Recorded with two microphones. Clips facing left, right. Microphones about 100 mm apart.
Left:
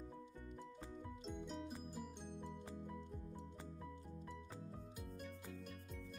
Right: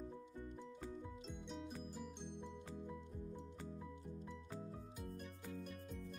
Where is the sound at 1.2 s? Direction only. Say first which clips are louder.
Left 2 dB; centre (ahead or behind).